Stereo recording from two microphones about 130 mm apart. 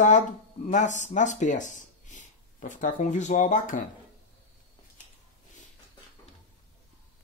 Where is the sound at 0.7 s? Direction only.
70° left (ahead or behind); by 3.8 s 90° left.